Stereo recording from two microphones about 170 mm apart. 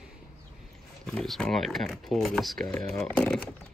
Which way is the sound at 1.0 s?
Centre (ahead or behind).